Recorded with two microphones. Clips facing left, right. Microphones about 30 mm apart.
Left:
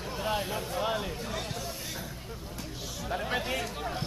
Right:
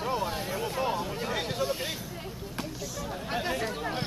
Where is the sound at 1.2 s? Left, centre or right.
Right.